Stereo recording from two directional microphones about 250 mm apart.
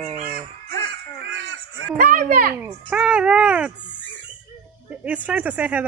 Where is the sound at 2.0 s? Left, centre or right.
Right.